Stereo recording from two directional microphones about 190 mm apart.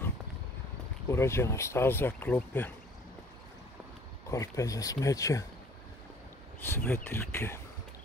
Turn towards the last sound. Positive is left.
turn(degrees=15)  # may be behind; listen again after turning